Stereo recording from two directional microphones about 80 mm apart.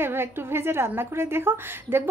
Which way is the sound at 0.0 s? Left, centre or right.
Right.